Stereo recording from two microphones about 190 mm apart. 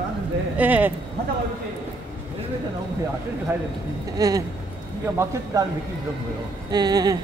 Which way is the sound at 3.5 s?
10° right (ahead or behind).